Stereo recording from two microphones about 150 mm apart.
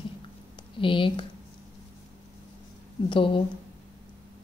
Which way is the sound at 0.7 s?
35° left (ahead or behind).